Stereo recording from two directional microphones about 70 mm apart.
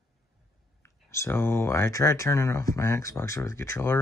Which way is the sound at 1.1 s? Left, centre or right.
Left.